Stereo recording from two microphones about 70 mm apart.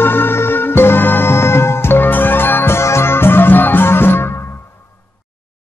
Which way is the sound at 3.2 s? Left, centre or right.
Left.